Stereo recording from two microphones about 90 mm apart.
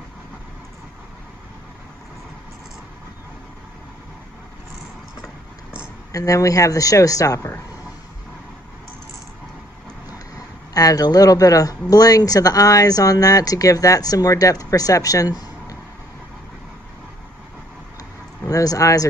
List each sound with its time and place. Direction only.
6.1 s speech: 40° left (ahead or behind)
10.1 s speech: 45° left (ahead or behind)
18.5 s speech: 40° left (ahead or behind)